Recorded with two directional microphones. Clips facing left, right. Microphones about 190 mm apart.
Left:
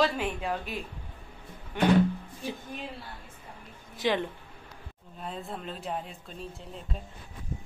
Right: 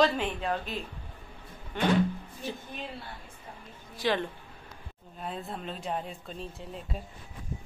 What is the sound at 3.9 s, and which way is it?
Speech, 20° left (ahead or behind).